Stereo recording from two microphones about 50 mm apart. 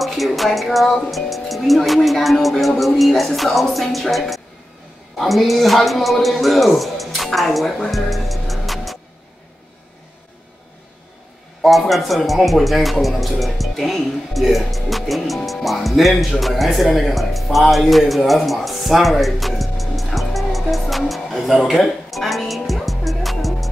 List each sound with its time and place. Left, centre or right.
0.0 s speech: centre
7.9 s music: centre
11.9 s speech: centre